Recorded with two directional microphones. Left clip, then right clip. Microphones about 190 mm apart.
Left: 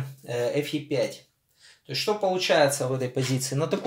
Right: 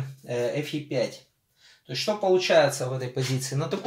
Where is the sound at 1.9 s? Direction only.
40° left (ahead or behind).